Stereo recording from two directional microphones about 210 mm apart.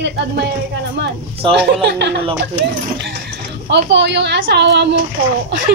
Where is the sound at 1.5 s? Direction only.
55° right (ahead or behind).